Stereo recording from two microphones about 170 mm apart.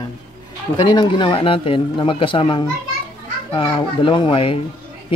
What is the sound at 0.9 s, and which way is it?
Speech, 30° left (ahead or behind).